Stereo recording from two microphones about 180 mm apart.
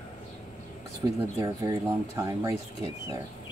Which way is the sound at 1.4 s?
15° right (ahead or behind).